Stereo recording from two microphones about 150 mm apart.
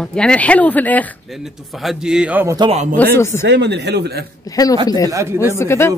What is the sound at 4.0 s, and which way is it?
Speech, 90° right.